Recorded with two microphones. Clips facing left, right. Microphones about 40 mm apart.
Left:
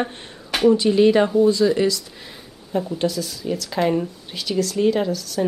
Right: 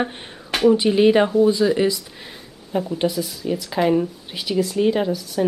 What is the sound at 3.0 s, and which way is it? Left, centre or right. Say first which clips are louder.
Speech: right 1 dB; centre.